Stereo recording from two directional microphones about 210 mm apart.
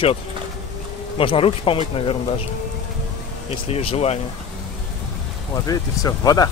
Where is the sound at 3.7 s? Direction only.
30° left (ahead or behind).